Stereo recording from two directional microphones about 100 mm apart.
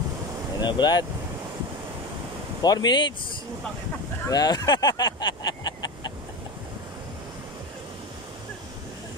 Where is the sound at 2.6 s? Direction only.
45° left (ahead or behind).